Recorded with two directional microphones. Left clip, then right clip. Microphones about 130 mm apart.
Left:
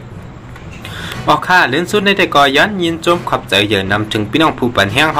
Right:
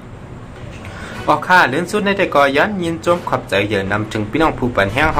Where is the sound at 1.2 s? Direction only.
20° left (ahead or behind).